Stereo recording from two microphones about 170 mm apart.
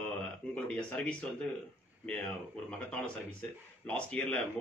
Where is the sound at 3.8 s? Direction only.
5° left (ahead or behind).